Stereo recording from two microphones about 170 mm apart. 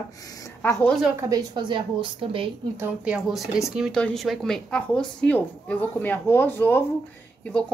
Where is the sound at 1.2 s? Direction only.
20° right (ahead or behind).